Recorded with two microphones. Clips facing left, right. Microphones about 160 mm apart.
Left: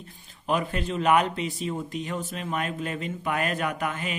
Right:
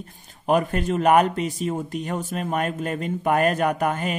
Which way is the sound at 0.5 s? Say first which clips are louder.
Right 6 dB; 50° right (ahead or behind).